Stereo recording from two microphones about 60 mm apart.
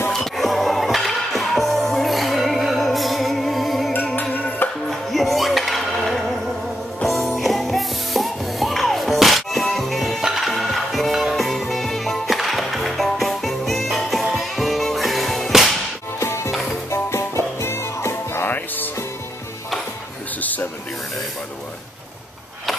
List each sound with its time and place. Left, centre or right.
0.1 s music: centre
4.1 s music: left
4.8 s music: centre
16.2 s music: left
20.3 s a sound: left